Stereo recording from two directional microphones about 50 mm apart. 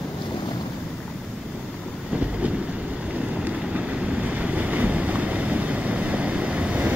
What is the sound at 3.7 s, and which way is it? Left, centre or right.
Waves, right.